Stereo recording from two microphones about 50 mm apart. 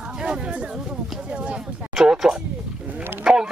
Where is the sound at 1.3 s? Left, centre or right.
Right.